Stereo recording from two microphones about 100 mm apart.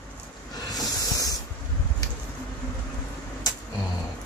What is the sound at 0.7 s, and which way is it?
Hiss, 35° left (ahead or behind).